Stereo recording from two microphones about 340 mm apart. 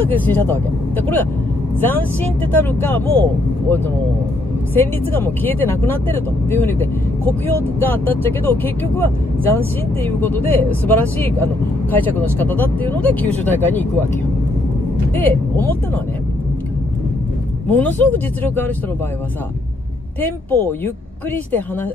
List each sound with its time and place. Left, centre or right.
0.0 s speech: centre
17.6 s speech: centre
20.2 s speech: centre